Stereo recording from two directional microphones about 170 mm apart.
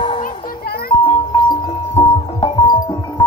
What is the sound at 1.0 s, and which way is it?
Music, 30° left (ahead or behind).